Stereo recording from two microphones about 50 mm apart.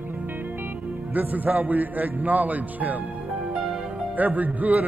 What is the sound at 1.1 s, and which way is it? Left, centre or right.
A man's voice, right.